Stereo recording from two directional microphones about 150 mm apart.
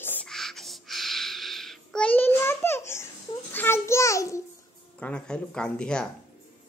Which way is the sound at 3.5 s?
15° left (ahead or behind).